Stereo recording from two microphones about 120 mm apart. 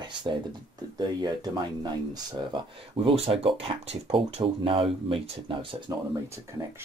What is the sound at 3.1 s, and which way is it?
Speech, 50° right (ahead or behind).